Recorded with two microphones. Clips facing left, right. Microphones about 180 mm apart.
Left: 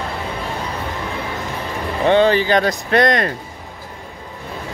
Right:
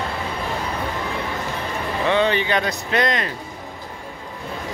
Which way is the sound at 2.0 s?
35° left (ahead or behind).